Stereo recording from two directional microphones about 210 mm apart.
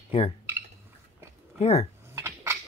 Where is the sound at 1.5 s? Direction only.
30° left (ahead or behind).